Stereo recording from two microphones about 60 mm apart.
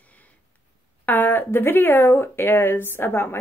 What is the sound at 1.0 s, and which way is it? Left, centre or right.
A woman's voice, left.